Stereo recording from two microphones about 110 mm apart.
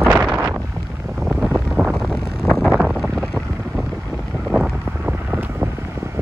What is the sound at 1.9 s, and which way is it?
Vehicle, 5° left (ahead or behind).